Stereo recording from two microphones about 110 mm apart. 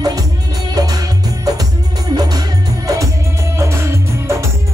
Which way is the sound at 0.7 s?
35° right (ahead or behind).